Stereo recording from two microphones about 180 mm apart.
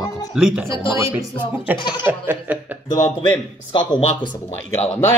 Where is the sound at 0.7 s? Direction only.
15° right (ahead or behind).